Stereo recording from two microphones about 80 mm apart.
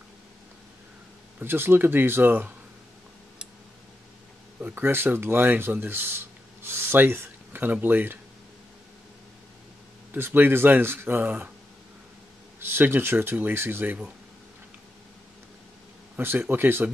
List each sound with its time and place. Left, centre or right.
1.4 s speech: right
4.6 s speech: right
10.1 s speech: right
12.5 s speech: right
16.2 s speech: right